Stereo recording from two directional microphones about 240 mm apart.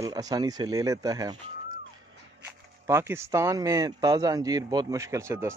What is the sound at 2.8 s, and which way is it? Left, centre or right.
Speech, centre.